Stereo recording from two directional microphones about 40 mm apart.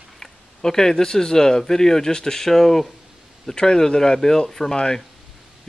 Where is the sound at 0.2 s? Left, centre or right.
Centre.